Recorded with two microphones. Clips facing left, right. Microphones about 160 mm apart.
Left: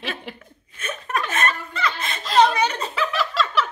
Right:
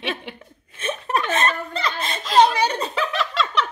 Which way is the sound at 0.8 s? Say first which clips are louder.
Right 3 dB; 30° right (ahead or behind).